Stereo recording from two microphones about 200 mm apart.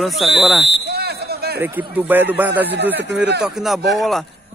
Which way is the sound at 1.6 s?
10° right (ahead or behind).